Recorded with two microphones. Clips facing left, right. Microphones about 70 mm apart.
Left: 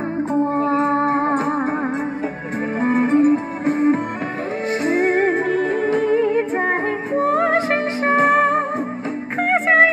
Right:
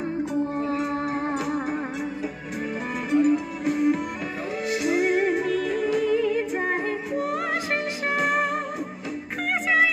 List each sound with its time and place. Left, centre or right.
0.3 s music: left
2.8 s music: left